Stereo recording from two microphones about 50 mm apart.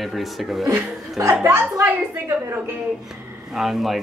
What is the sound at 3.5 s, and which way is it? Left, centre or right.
Speech, centre.